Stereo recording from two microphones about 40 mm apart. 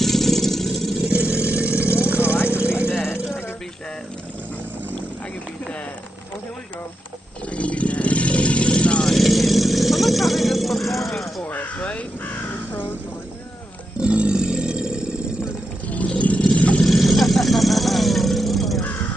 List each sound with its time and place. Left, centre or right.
0.0 s vehicle: centre
1.1 s vehicle: right
7.4 s vehicle: left
9.1 s vehicle: centre
11.4 s crow: left
13.9 s a sound: right
16.1 s vehicle: left
16.8 s vehicle: centre